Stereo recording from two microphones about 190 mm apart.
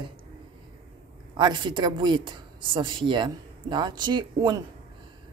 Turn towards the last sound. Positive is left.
turn(degrees=-20)  # may be behind; listen again after turning